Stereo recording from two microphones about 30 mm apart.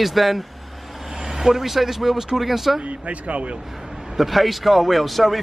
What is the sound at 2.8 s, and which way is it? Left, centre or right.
Speech, right.